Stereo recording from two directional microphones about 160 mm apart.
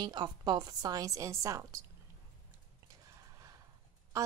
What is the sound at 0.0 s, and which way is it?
Speech, 25° right (ahead or behind).